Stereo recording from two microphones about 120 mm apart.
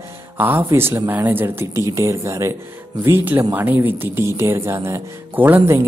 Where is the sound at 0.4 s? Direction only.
15° right (ahead or behind).